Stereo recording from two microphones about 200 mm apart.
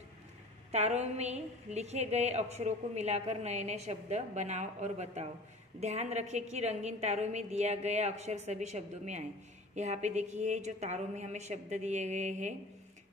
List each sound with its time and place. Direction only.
0.7 s a woman's voice: 35° right (ahead or behind)